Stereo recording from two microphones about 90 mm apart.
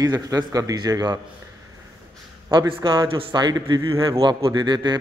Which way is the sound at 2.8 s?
45° right (ahead or behind).